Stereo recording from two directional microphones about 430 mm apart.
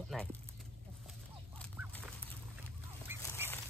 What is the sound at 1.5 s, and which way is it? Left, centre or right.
Duck, centre.